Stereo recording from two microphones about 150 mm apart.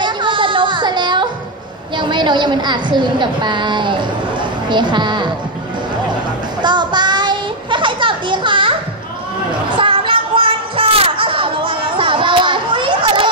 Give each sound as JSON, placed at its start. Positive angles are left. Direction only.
{"t": 0.0, "sound": "music", "side_deg": -35}
{"t": 2.0, "sound": "a woman's voice", "side_deg": -30}
{"t": 6.6, "sound": "child singing", "side_deg": -30}
{"t": 9.7, "sound": "a sound", "side_deg": -35}